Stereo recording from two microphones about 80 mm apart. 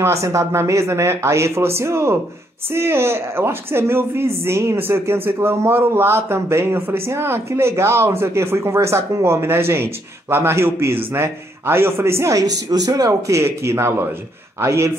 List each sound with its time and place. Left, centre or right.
0.0 s speech: right